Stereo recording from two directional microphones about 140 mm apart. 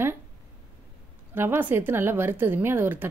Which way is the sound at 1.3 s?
15° right (ahead or behind).